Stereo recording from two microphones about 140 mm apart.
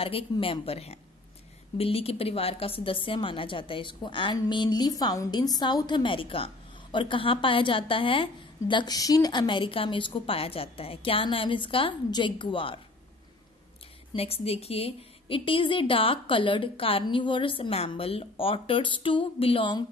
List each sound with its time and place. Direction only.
0.0 s a woman's voice: 40° left (ahead or behind)
14.1 s a woman's voice: 45° left (ahead or behind)